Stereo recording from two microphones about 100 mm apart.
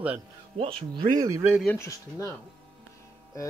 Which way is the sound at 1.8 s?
30° left (ahead or behind).